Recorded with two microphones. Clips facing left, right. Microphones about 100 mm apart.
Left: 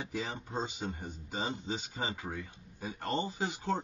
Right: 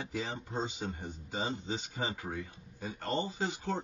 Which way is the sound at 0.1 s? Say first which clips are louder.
Even; 15° left (ahead or behind).